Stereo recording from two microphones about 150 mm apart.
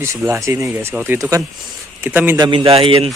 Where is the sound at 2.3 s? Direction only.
30° right (ahead or behind).